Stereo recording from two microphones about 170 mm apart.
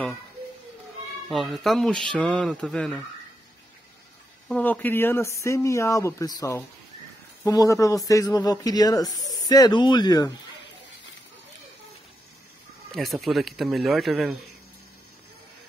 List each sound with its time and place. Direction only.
1.3 s speech: centre (ahead or behind)
4.5 s a man's voice: 10° left (ahead or behind)
12.9 s speech: centre (ahead or behind)